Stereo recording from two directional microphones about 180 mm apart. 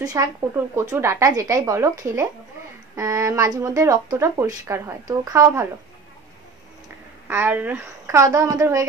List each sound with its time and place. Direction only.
0.0 s speech: 20° right (ahead or behind)
7.2 s speech: 10° right (ahead or behind)